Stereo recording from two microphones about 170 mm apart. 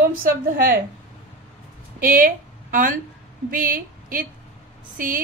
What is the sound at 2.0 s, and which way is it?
A woman's voice, 55° right (ahead or behind).